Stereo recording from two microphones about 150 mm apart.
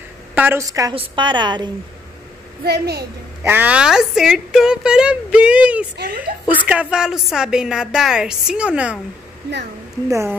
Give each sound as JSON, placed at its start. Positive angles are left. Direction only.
{"t": 0.3, "sound": "a woman's voice", "side_deg": -15}
{"t": 2.6, "sound": "a child's voice", "side_deg": -90}
{"t": 3.4, "sound": "a woman's voice", "side_deg": -10}
{"t": 5.9, "sound": "a child's voice", "side_deg": -90}
{"t": 6.5, "sound": "a woman's voice", "side_deg": -10}
{"t": 10.0, "sound": "a woman's voice", "side_deg": -20}